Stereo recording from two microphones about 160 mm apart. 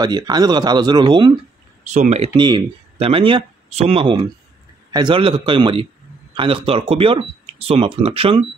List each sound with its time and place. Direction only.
0.0 s speech: 25° right (ahead or behind)
1.9 s speech: 45° right (ahead or behind)
2.3 s speech: 30° right (ahead or behind)